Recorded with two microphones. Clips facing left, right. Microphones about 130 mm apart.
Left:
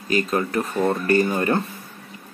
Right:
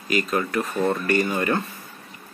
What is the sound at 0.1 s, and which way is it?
Speech, 30° left (ahead or behind).